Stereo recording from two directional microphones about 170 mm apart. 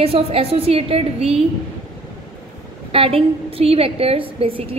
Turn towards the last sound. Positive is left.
turn(degrees=-35)  # may be behind; listen again after turning